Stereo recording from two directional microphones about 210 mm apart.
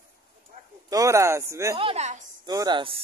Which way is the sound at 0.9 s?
15° right (ahead or behind).